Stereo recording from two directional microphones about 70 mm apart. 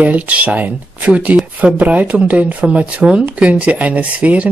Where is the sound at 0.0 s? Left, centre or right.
Right.